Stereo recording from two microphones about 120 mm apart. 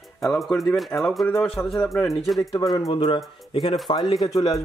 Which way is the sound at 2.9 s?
45° left (ahead or behind).